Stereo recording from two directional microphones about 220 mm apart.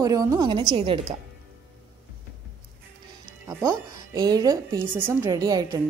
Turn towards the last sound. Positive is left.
turn(degrees=-15)  # may be behind; listen again after turning